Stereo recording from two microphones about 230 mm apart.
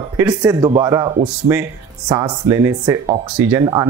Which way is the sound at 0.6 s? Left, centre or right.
Centre.